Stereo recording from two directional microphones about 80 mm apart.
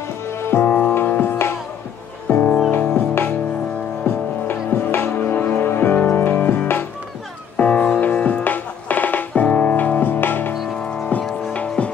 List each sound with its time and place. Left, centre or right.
0.4 s music: left
0.7 s music: centre
11.5 s music: centre